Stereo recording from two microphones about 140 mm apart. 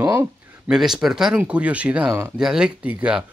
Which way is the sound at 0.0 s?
25° right (ahead or behind).